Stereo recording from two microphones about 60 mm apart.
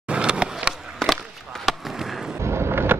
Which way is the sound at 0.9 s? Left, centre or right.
Centre.